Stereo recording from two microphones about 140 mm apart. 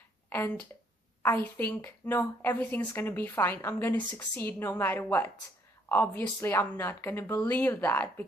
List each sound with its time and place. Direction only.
0.3 s a woman's voice: 15° left (ahead or behind)